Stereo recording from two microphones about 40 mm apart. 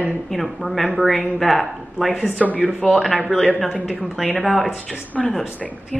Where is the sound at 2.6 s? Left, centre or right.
Left.